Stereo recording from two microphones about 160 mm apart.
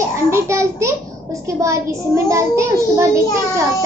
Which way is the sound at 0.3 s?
15° right (ahead or behind).